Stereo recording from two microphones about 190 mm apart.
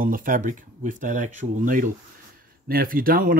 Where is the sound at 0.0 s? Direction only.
45° right (ahead or behind).